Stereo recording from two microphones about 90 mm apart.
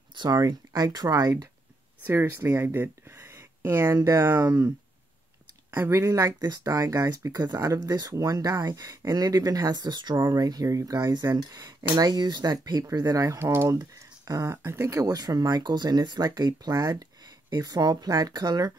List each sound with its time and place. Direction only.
0.1 s speech: 55° right (ahead or behind)
0.4 s speech: 45° right (ahead or behind)
2.0 s speech: 25° right (ahead or behind)
5.7 s speech: 20° right (ahead or behind)
5.9 s speech: 35° right (ahead or behind)
13.5 s speech: 25° right (ahead or behind)
13.7 s speech: 40° right (ahead or behind)